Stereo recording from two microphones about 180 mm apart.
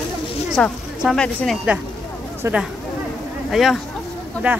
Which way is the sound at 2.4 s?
15° right (ahead or behind).